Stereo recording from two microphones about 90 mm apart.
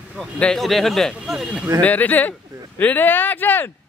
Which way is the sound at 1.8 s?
20° left (ahead or behind).